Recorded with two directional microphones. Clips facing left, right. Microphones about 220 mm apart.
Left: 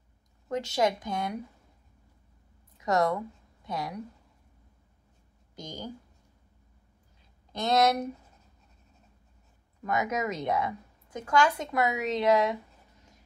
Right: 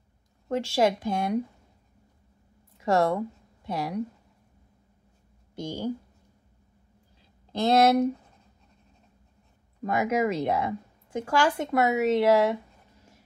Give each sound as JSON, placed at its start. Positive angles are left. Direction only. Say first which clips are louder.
{"t": 0.5, "sound": "a woman's voice", "louder": "right 3 dB", "side_deg": -30}
{"t": 2.8, "sound": "a woman's voice", "louder": "right 3 dB", "side_deg": -25}
{"t": 5.6, "sound": "a woman's voice", "louder": "right 8 dB", "side_deg": -25}
{"t": 7.5, "sound": "a woman's voice", "louder": "right 5 dB", "side_deg": -30}
{"t": 9.8, "sound": "a woman's voice", "louder": "right 5 dB", "side_deg": -30}